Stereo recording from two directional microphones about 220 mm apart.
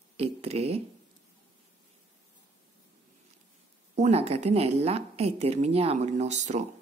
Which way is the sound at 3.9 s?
30° right (ahead or behind).